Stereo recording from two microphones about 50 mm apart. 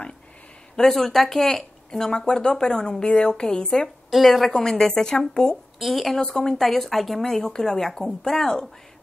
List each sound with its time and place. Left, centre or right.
0.7 s speech: centre
4.1 s speech: centre
5.8 s a woman's voice: centre